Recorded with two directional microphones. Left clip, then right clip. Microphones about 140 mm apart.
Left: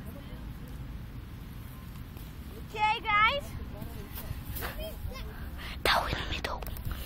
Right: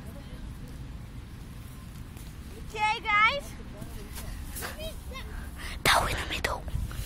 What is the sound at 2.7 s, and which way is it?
Vehicle, 10° right (ahead or behind).